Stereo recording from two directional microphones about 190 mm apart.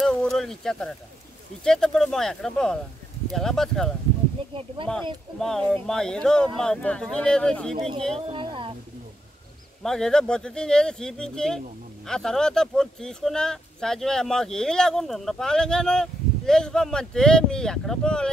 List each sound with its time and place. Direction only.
0.0 s speech: 5° left (ahead or behind)
7.7 s speech: 30° right (ahead or behind)
8.3 s a sound: 25° right (ahead or behind)
9.8 s speech: 5° left (ahead or behind)